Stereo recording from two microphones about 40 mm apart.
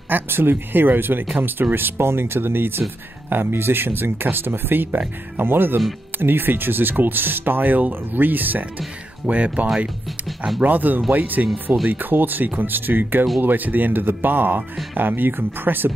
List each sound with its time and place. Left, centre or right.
0.1 s speech: right
9.3 s speech: right
10.6 s speech: right